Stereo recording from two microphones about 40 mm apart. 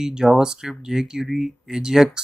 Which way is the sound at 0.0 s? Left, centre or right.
Centre.